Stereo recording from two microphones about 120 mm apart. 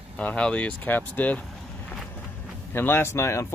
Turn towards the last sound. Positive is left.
turn(degrees=25)  # may be behind; listen again after turning